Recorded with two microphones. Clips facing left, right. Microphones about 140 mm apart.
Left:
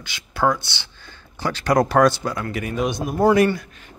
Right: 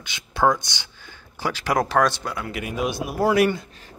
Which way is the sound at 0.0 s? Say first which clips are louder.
Right 1 dB; 20° right (ahead or behind).